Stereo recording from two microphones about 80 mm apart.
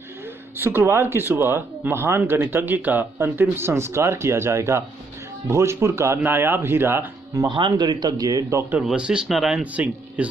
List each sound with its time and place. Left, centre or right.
0.6 s speech: right
7.4 s speech: right
8.8 s a man's voice: centre
9.6 s a man's voice: centre